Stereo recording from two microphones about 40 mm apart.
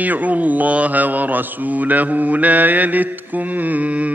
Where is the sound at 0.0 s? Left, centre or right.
Right.